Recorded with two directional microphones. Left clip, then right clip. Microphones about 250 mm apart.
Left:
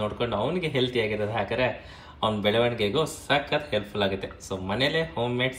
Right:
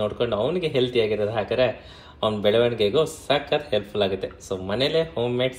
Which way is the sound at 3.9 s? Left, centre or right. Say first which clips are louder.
Right 3 dB; left.